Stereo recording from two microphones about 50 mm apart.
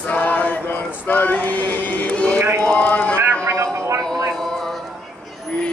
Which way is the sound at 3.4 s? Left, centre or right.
Right.